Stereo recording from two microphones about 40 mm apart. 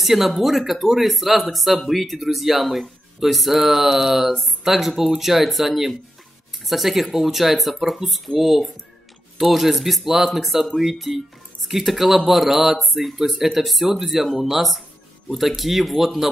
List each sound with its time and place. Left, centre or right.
0.0 s speech: centre